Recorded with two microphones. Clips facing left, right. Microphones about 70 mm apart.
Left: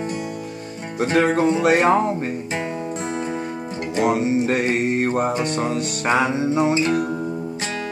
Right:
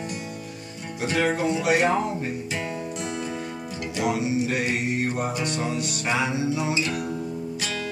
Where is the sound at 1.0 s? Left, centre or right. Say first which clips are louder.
Left 6 dB; left.